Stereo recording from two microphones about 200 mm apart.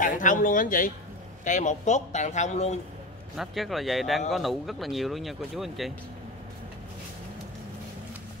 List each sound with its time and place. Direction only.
0.0 s a man's voice: 40° left (ahead or behind)
3.3 s speech: centre (ahead or behind)